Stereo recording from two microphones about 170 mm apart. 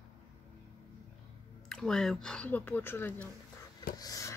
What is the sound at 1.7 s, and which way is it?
Speech, 5° left (ahead or behind).